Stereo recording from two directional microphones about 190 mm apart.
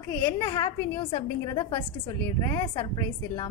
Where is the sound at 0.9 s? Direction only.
30° left (ahead or behind).